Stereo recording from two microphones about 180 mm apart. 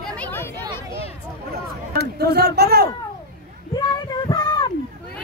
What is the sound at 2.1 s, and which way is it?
Speech, 65° right (ahead or behind).